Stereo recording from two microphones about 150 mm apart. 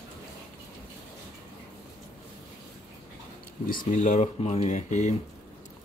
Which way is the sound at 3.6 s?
60° left (ahead or behind).